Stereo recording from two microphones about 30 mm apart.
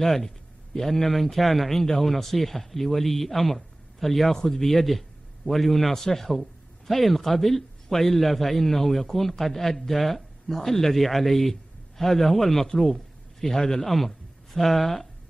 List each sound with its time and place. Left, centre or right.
0.0 s a man's voice: centre
13.8 s speech: centre